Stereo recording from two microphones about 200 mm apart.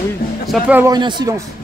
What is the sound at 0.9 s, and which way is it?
Speech, 20° right (ahead or behind).